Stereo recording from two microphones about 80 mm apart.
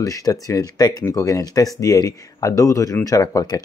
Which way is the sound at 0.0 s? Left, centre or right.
Left.